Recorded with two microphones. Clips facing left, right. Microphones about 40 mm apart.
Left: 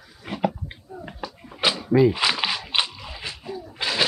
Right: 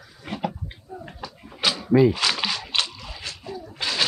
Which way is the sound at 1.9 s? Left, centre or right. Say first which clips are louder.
Right 1 dB; centre.